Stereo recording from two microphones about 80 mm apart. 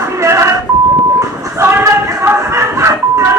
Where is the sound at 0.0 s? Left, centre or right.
Right.